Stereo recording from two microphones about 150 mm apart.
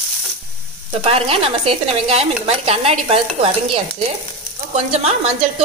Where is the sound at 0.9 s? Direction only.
40° right (ahead or behind).